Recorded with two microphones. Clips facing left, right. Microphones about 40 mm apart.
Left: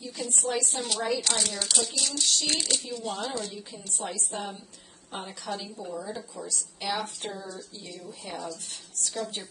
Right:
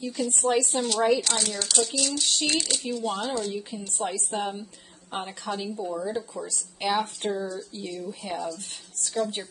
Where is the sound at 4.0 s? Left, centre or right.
Right.